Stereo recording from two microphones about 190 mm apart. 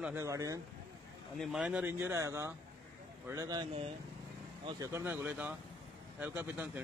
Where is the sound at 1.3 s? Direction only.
5° right (ahead or behind).